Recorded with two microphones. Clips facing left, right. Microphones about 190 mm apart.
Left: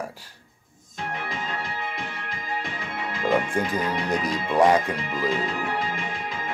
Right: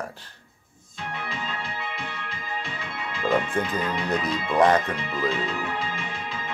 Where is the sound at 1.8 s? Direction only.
45° left (ahead or behind).